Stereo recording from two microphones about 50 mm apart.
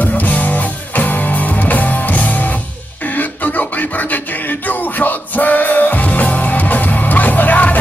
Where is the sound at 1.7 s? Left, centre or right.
Left.